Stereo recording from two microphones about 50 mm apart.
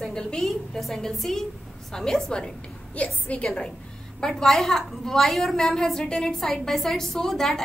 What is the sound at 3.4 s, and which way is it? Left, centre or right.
A woman's voice, centre.